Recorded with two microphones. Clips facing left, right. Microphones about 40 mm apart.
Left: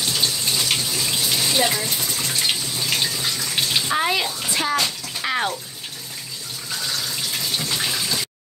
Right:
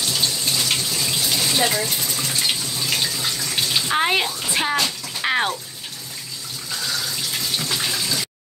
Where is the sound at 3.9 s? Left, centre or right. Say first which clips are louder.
Right 4 dB; right.